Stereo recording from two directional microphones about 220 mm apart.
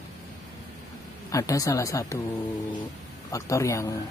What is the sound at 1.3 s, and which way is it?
Speech, 15° left (ahead or behind).